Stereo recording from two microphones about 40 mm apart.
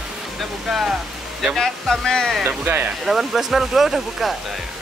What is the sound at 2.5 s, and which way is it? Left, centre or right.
Speech, right.